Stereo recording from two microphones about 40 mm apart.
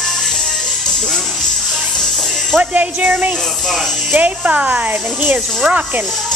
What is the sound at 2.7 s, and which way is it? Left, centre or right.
Speech, right.